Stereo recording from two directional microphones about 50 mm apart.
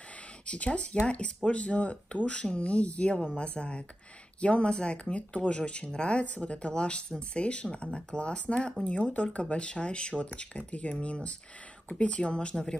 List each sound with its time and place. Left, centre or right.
0.5 s speech: left